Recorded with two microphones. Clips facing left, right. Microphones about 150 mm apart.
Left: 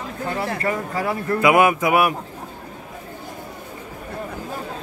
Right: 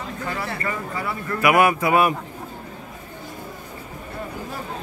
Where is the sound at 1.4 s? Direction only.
20° left (ahead or behind).